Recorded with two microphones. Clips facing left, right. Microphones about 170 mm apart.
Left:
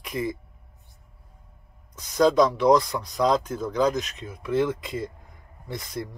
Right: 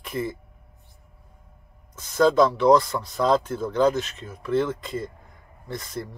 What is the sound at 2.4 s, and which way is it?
Speech, centre (ahead or behind).